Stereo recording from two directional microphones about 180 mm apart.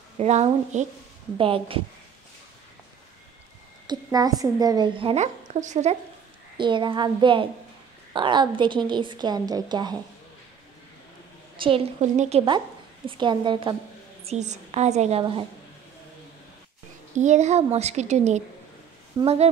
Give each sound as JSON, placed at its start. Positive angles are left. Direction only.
{"t": 0.2, "sound": "a woman's voice", "side_deg": -40}
{"t": 3.8, "sound": "a woman's voice", "side_deg": -20}
{"t": 6.5, "sound": "a woman's voice", "side_deg": -25}
{"t": 11.5, "sound": "a woman's voice", "side_deg": -30}
{"t": 14.2, "sound": "a woman's voice", "side_deg": -40}
{"t": 17.2, "sound": "a woman's voice", "side_deg": -40}